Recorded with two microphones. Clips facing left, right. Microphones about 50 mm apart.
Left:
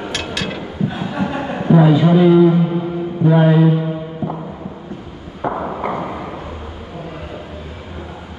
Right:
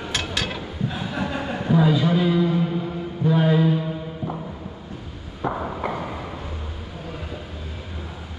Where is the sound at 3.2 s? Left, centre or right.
Left.